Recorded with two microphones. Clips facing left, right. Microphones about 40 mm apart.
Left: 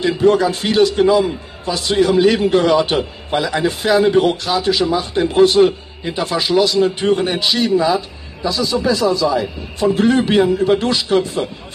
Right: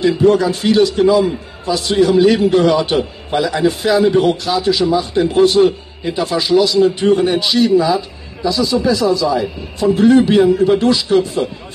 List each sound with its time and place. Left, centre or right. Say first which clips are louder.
0.0 s a man's voice: right 2 dB; left